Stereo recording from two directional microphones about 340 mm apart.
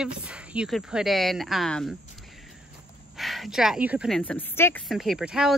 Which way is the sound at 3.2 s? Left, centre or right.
Centre.